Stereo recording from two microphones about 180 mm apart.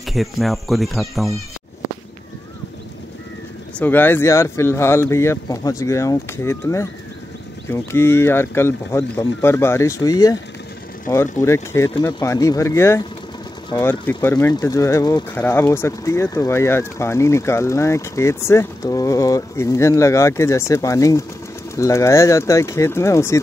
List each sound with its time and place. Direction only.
0.0 s speech: centre (ahead or behind)
3.8 s speech: 10° left (ahead or behind)